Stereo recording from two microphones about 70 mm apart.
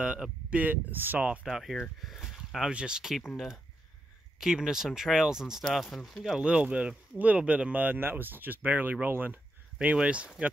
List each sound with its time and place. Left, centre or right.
0.0 s speech: centre
1.2 s speech: centre
1.5 s speech: centre
4.4 s speech: centre
5.6 s speech: centre
6.4 s speech: centre
9.8 s speech: centre